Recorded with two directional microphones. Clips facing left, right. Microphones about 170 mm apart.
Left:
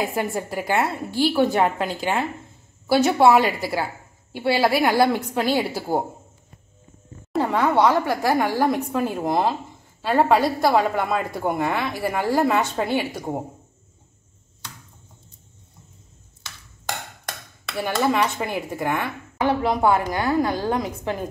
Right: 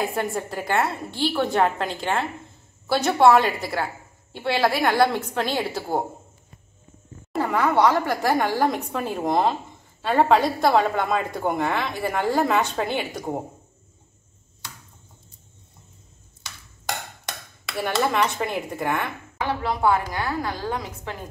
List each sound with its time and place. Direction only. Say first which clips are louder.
0.0 s a woman's voice: left 1 dB; 5° left (ahead or behind)
7.3 s a woman's voice: left 1 dB; 25° left (ahead or behind); by 13.4 s 5° left (ahead or behind)
17.8 s a woman's voice: left 1 dB; 10° left (ahead or behind)
19.6 s a woman's voice: even; 20° left (ahead or behind)